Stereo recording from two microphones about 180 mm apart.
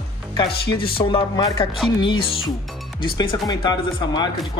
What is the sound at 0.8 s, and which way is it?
Speech, 30° left (ahead or behind).